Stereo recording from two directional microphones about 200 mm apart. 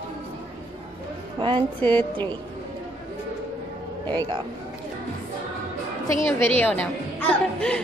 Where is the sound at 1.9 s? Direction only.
10° left (ahead or behind).